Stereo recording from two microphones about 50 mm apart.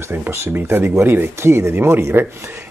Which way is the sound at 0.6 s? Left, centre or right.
Right.